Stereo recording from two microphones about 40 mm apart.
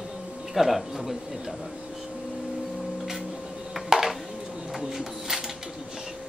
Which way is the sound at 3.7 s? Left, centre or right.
Centre.